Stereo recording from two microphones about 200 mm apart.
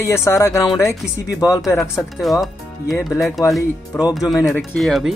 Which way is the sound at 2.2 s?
Centre (ahead or behind).